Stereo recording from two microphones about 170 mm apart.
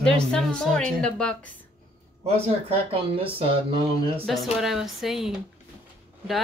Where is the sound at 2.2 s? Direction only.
35° right (ahead or behind).